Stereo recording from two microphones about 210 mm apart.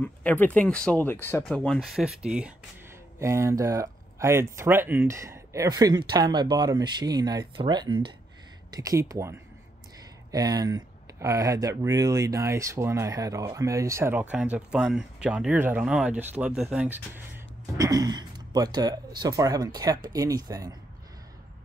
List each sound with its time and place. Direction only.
0.0 s speech: 5° left (ahead or behind); by 20.7 s 15° right (ahead or behind)